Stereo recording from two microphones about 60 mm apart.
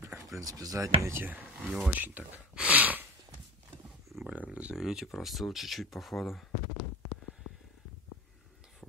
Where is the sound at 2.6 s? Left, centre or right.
Right.